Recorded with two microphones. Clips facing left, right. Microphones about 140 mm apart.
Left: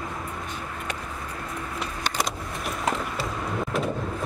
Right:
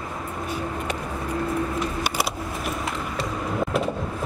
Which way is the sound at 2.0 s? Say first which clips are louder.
Right 2 dB; 10° right (ahead or behind).